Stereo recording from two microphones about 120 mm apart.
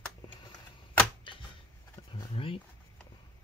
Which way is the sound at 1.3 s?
45° left (ahead or behind).